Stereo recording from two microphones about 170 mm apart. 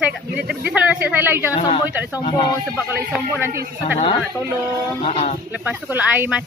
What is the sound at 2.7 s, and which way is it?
Speech, 10° right (ahead or behind).